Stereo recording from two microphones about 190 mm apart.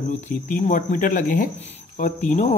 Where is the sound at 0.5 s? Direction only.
45° left (ahead or behind).